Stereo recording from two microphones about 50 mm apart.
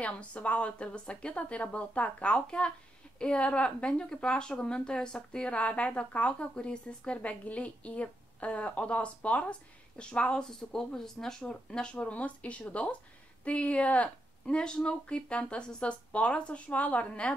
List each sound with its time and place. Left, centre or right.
0.0 s speech: left
11.0 s speech: centre; by 14.1 s left
14.4 s speech: centre